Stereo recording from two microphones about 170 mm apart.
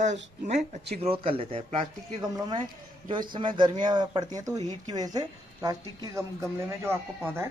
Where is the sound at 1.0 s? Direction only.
35° right (ahead or behind).